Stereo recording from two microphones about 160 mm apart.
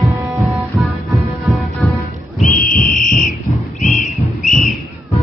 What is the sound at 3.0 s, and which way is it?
Fire alarm, 55° left (ahead or behind).